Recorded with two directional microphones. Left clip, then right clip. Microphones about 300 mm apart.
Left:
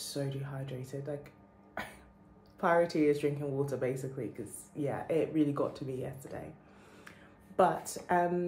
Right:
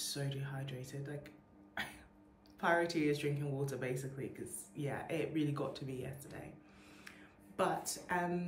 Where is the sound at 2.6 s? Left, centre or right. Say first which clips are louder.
Left 5 dB; centre.